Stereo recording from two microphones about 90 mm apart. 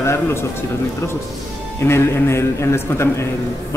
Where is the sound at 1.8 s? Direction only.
30° left (ahead or behind).